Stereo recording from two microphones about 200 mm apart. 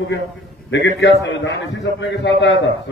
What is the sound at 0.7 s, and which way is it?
A man's voice, 60° left (ahead or behind).